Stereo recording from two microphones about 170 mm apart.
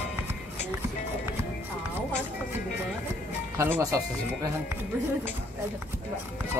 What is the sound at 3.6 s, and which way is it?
Speech, 20° right (ahead or behind).